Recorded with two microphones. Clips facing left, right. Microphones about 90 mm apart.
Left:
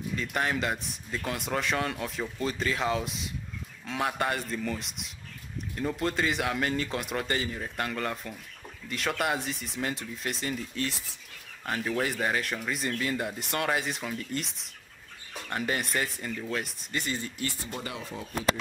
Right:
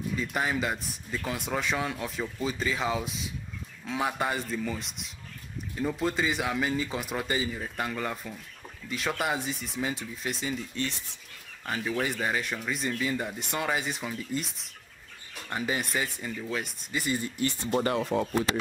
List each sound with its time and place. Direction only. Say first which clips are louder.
0.1 s speech: even; 5° right (ahead or behind)
17.7 s speech: right 11 dB; 50° right (ahead or behind)